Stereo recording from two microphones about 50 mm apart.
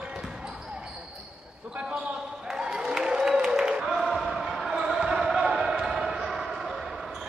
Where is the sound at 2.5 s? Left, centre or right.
Centre.